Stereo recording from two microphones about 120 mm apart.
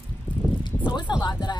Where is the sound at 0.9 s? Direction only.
40° left (ahead or behind).